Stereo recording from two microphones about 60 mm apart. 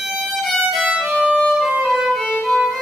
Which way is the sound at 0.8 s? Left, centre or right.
Centre.